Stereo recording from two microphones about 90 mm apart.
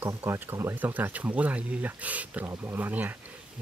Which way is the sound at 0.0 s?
25° right (ahead or behind).